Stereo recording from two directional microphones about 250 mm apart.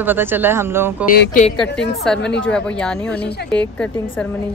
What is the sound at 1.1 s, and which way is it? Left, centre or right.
Speech, left.